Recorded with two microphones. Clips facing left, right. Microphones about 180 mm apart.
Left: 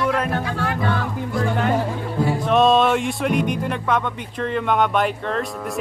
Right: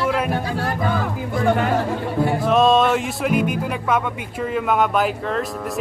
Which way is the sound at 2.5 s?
Centre (ahead or behind).